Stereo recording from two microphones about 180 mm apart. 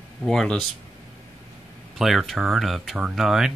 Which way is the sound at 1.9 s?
Centre (ahead or behind).